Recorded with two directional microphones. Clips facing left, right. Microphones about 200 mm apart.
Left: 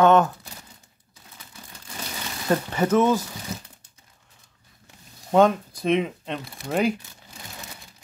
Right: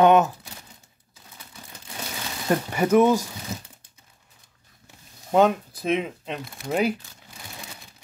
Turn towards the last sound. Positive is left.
turn(degrees=-5)  # may be behind; listen again after turning